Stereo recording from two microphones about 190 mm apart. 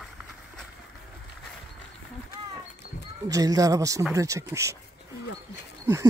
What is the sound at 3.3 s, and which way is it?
Speech, 20° right (ahead or behind).